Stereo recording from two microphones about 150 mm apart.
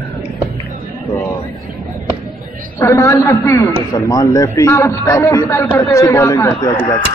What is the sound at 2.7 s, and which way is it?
A man's voice, 15° left (ahead or behind).